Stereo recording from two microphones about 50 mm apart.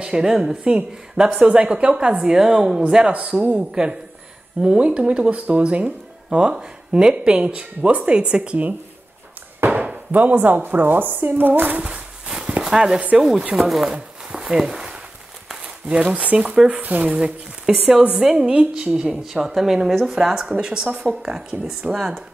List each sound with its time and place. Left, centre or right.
0.0 s speech: centre
9.8 s speech: right
11.8 s a sound: centre
13.2 s speech: centre
13.9 s a sound: centre
15.6 s speech: centre
17.0 s speech: centre
19.4 s speech: centre
19.9 s speech: centre
20.2 s speech: centre